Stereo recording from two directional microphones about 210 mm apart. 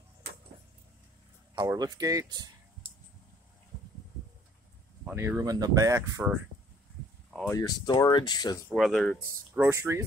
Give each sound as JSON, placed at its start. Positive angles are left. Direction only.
{"t": 1.5, "sound": "speech", "side_deg": -20}
{"t": 5.0, "sound": "speech", "side_deg": -10}
{"t": 7.5, "sound": "speech", "side_deg": 20}
{"t": 8.6, "sound": "speech", "side_deg": 0}
{"t": 9.2, "sound": "speech", "side_deg": -15}